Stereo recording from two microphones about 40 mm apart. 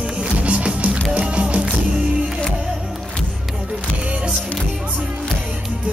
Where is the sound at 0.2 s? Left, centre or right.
Right.